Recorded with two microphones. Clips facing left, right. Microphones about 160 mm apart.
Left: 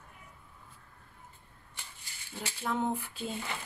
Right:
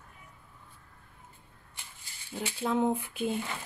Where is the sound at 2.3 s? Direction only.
20° right (ahead or behind).